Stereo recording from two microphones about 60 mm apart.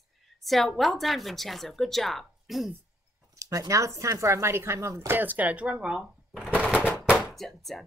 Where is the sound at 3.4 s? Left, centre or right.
Right.